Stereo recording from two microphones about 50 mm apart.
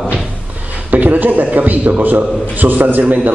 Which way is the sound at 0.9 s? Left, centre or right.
Right.